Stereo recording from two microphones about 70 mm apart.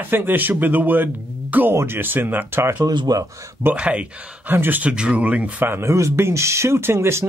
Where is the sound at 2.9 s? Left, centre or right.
Right.